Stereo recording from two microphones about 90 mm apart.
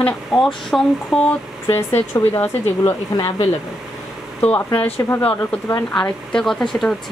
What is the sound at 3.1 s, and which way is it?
Speech, 45° left (ahead or behind).